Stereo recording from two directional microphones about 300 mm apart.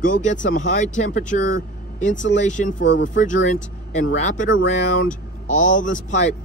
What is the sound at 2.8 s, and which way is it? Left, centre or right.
Speech, left.